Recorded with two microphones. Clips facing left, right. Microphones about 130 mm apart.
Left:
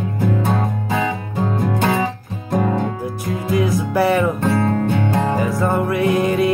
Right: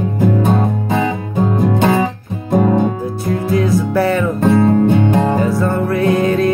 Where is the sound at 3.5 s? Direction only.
10° left (ahead or behind).